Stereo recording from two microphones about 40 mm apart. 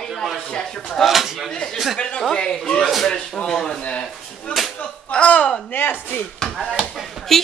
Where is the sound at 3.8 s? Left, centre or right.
Left.